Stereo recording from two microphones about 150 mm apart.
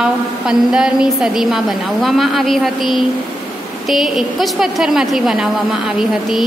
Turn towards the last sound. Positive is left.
turn(degrees=-5)  # may be behind; listen again after turning